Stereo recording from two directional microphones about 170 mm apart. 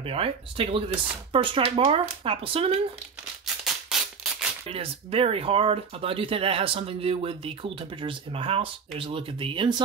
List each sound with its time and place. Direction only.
0.0 s speech: 35° right (ahead or behind)
3.4 s music: centre (ahead or behind)
4.6 s speech: 35° right (ahead or behind)